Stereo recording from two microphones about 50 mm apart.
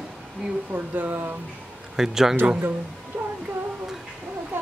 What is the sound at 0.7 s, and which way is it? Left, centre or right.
Speech, right.